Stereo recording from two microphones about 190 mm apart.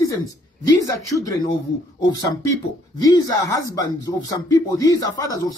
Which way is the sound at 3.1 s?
15° left (ahead or behind).